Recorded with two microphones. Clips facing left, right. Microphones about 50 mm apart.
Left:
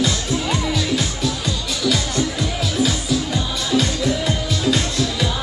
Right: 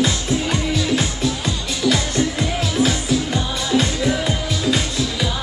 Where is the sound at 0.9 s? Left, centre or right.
Right.